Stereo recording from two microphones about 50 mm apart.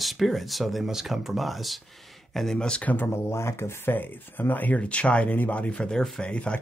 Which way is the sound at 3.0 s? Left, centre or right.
Left.